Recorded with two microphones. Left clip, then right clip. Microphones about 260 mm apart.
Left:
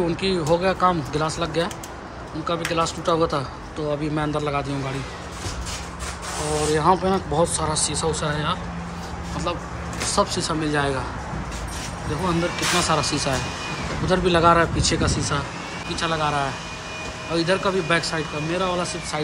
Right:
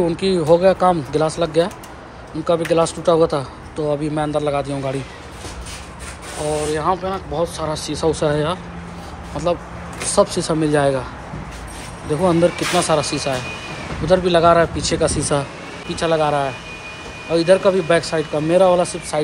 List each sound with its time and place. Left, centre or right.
0.0 s speech: centre
6.7 s speech: centre
12.1 s speech: centre